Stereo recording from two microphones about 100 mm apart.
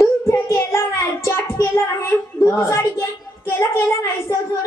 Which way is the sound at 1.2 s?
30° left (ahead or behind).